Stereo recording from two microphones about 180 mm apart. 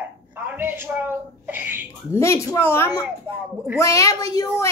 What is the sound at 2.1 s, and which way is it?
Speech, 15° left (ahead or behind).